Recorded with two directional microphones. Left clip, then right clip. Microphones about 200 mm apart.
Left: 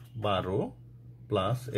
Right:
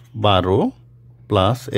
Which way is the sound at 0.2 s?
50° right (ahead or behind).